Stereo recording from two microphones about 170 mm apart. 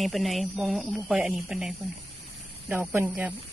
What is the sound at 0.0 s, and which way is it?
Speech, centre (ahead or behind).